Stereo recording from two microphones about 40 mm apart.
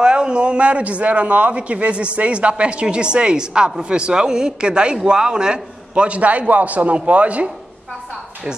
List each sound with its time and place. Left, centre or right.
0.0 s a man's voice: right